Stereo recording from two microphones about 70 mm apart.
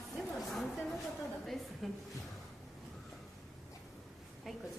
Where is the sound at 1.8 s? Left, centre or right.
Centre.